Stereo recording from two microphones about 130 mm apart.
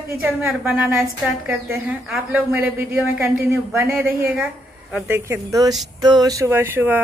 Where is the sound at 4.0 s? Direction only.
5° right (ahead or behind).